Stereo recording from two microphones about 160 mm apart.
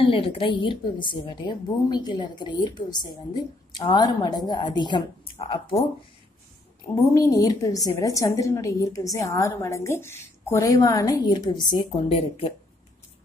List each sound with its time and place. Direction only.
0.0 s a woman's voice: 35° left (ahead or behind)
7.2 s a woman's voice: 20° left (ahead or behind)